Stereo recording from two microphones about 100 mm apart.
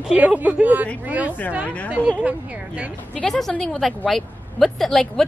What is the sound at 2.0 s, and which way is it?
Speech, 15° left (ahead or behind).